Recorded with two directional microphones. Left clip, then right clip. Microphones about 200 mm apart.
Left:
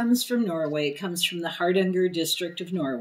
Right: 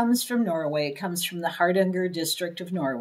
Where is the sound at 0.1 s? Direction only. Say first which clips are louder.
Even; 55° right (ahead or behind).